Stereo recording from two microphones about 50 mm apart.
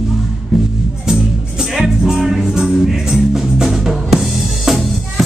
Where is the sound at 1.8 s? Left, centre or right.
Centre.